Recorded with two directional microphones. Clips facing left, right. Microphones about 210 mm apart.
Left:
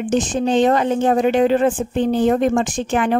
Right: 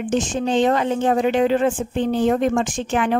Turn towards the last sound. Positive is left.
turn(degrees=40)  # may be behind; listen again after turning